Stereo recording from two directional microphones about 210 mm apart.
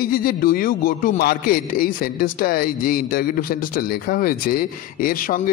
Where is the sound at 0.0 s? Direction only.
45° left (ahead or behind).